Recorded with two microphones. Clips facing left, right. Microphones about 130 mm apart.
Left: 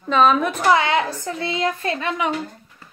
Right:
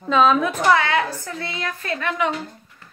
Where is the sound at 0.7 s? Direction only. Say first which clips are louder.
Left 1 dB; 20° left (ahead or behind).